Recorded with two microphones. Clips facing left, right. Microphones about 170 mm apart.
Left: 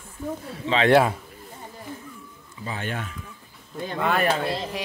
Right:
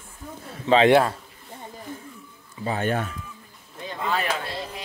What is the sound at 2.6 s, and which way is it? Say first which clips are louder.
Speech: right 6 dB; 40° right (ahead or behind).